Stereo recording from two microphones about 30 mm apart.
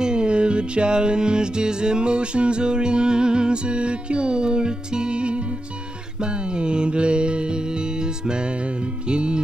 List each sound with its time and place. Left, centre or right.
0.0 s music: right
6.5 s mantra: right
9.1 s music: right